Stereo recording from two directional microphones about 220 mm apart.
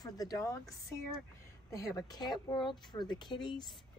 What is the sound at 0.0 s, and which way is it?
Speech, 15° left (ahead or behind).